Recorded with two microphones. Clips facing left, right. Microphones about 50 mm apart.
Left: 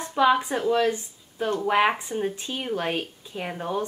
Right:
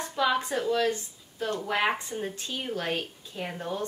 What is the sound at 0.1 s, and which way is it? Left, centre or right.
Speech, left.